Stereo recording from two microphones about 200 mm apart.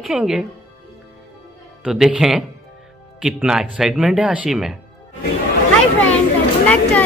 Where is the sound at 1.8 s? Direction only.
5° right (ahead or behind).